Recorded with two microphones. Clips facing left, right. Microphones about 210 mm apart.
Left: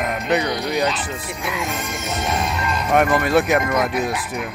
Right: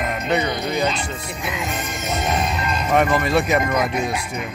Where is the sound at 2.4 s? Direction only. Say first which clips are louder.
Even; 20° right (ahead or behind).